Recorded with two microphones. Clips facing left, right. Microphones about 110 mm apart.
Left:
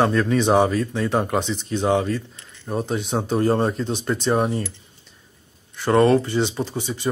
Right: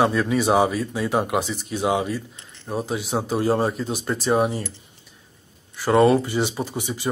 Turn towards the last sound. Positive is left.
turn(degrees=-15)  # may be behind; listen again after turning